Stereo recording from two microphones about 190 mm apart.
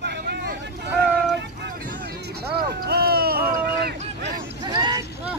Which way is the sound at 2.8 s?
55° right (ahead or behind).